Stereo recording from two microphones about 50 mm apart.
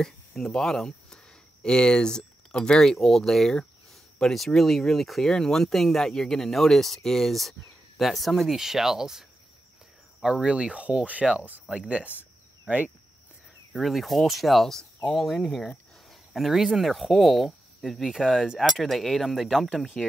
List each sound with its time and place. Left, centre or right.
0.0 s speech: centre
10.2 s speech: centre
13.7 s speech: centre